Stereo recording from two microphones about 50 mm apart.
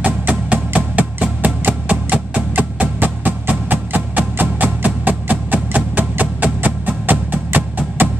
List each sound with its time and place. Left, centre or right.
0.0 s music: right